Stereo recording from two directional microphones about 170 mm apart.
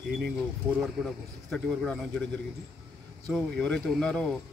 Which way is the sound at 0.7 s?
5° left (ahead or behind).